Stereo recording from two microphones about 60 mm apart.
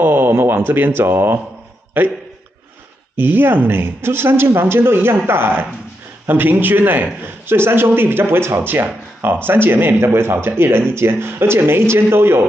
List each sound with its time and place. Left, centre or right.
0.0 s speech: right
3.2 s speech: right